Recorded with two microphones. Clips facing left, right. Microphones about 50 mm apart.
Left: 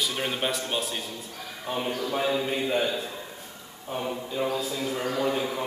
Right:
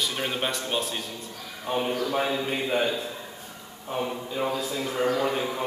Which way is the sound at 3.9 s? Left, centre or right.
Centre.